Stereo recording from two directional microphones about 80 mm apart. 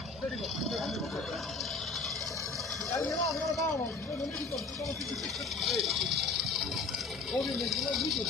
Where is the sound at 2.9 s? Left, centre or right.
Left.